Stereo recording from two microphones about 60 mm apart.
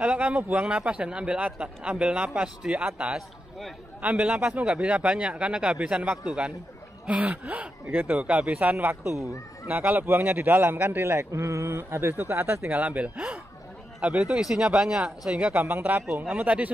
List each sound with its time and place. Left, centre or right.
0.0 s a man's voice: right
9.0 s speech: right
9.7 s a man's voice: right
12.7 s a man's voice: right
14.4 s speech: centre
15.5 s a man's voice: right